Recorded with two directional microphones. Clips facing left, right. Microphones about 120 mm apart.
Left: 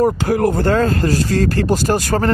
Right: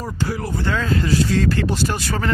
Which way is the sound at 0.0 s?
55° left (ahead or behind).